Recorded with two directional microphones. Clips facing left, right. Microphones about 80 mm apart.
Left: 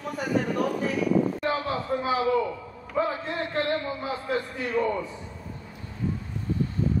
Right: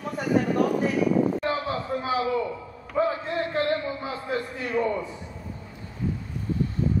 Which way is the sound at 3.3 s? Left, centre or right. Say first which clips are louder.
Right 1 dB; centre.